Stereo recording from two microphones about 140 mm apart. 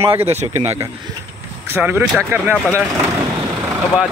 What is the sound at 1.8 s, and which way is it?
Speech, 10° right (ahead or behind).